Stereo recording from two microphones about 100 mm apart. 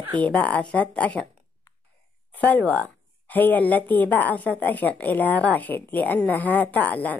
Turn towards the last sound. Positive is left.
turn(degrees=15)  # may be behind; listen again after turning